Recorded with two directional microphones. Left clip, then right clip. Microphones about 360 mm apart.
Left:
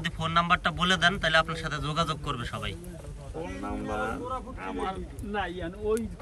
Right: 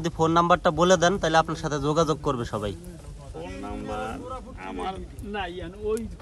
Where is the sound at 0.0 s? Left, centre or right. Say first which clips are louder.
Right 5 dB; centre.